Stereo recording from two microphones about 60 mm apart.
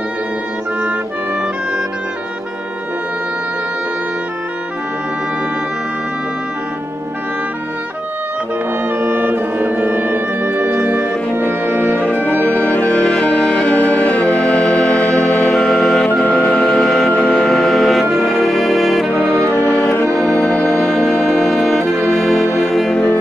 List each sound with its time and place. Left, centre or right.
8.8 s music: right
11.7 s music: left
16.6 s music: centre
19.7 s music: left
20.1 s music: centre
20.3 s music: centre
20.6 s music: centre